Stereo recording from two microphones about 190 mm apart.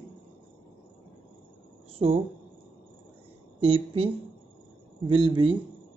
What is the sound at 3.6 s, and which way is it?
A man's voice, 30° right (ahead or behind).